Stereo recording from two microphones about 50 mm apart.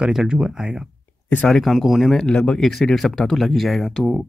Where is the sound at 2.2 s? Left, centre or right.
Centre.